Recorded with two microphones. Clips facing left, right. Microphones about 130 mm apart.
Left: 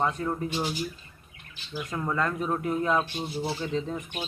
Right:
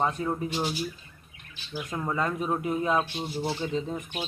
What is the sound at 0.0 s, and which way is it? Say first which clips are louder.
Speech: even; 15° right (ahead or behind).